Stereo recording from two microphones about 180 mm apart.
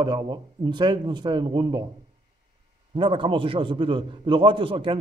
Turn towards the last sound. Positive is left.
turn(degrees=-30)  # may be behind; listen again after turning